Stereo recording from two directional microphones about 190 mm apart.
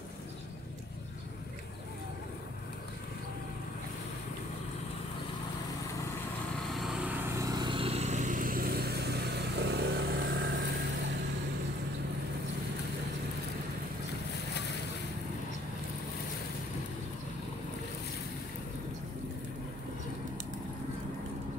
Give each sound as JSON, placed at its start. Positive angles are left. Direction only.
{"t": 6.7, "sound": "vehicle", "side_deg": 0}
{"t": 7.3, "sound": "vehicle", "side_deg": -20}